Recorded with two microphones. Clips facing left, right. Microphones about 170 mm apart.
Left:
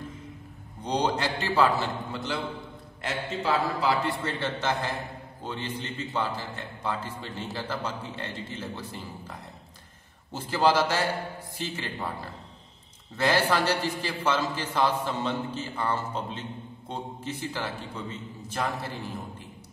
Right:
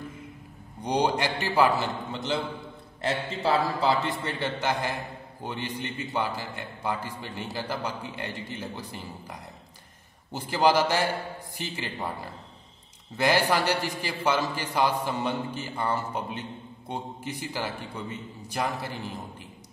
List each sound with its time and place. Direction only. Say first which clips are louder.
0.8 s a man's voice: right 2 dB; 15° right (ahead or behind)